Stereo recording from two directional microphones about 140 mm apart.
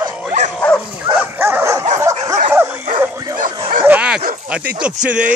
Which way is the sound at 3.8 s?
10° right (ahead or behind).